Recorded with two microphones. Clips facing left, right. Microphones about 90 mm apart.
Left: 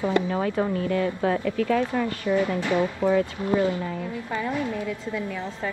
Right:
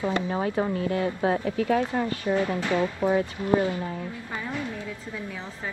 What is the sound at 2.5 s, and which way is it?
Speech, 20° left (ahead or behind).